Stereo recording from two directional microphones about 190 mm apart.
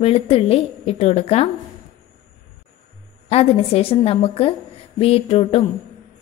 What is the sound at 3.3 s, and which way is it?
A woman's voice, 30° left (ahead or behind).